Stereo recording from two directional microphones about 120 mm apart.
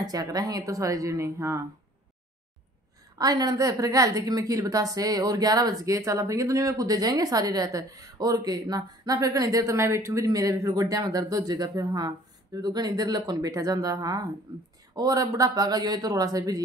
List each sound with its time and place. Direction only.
0.0 s a woman's voice: 30° right (ahead or behind)
3.2 s a woman's voice: 30° right (ahead or behind)